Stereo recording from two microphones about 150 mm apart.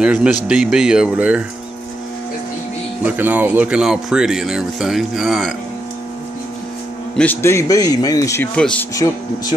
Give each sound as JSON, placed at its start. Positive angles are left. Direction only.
{"t": 0.0, "sound": "speech", "side_deg": -5}
{"t": 3.2, "sound": "speech", "side_deg": -10}
{"t": 7.2, "sound": "speech", "side_deg": 15}
{"t": 8.5, "sound": "speech", "side_deg": 5}
{"t": 8.9, "sound": "speech", "side_deg": 20}